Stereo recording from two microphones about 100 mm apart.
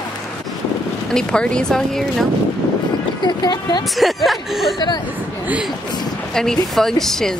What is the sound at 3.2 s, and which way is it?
Speech, 45° left (ahead or behind).